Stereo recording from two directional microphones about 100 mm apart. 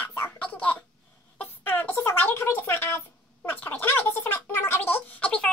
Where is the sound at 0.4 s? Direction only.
15° left (ahead or behind).